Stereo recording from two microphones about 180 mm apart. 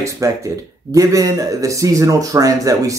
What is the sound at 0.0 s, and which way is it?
A man's voice, 15° right (ahead or behind).